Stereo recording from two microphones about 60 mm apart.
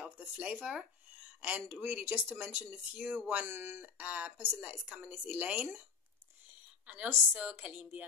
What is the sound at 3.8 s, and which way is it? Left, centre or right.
Speech, right.